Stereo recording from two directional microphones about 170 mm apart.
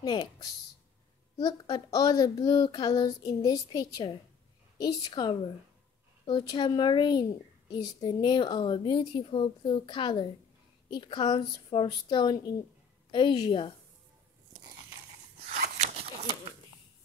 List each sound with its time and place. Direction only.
0.0 s speech: 25° left (ahead or behind)
15.5 s zipper: 45° right (ahead or behind)